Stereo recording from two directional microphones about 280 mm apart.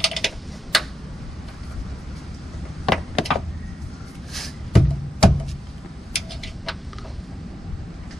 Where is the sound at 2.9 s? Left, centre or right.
Centre.